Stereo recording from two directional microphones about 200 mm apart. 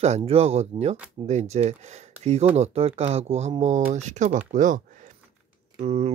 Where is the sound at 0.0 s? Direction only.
30° right (ahead or behind).